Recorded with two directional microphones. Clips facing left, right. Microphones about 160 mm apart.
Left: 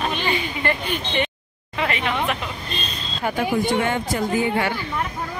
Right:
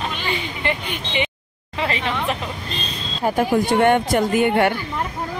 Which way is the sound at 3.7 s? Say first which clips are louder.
Right 6 dB; 65° right (ahead or behind).